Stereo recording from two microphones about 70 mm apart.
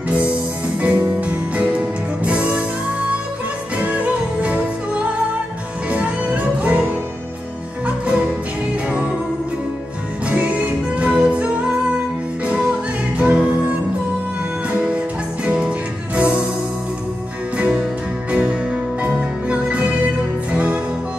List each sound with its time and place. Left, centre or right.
0.7 s music: centre
3.7 s music: centre
10.2 s music: centre
14.7 s music: centre
18.3 s music: centre